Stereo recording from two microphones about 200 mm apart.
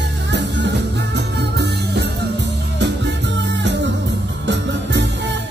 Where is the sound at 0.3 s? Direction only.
60° right (ahead or behind).